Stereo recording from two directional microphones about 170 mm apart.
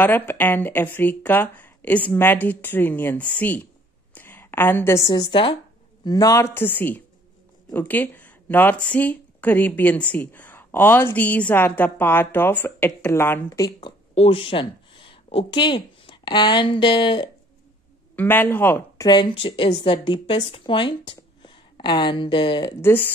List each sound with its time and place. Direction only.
0.0 s speech: 10° left (ahead or behind)
14.1 s speech: 35° left (ahead or behind)
18.1 s speech: 10° left (ahead or behind)
19.0 s speech: 25° left (ahead or behind)
22.8 s speech: 10° left (ahead or behind)